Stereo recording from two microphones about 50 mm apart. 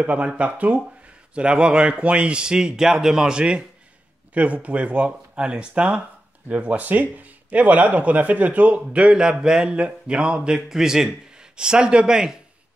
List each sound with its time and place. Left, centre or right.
0.0 s a man's voice: right